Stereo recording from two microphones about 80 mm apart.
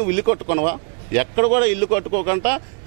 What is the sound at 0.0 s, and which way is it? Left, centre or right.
Speech, centre.